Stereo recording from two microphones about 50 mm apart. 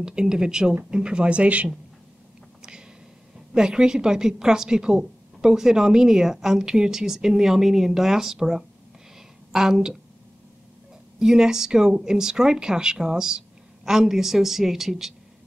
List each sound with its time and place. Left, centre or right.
0.0 s a woman's voice: centre
3.5 s a woman's voice: centre
11.1 s a woman's voice: centre